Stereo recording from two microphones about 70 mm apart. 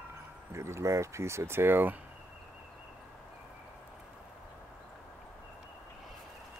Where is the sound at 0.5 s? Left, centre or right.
Right.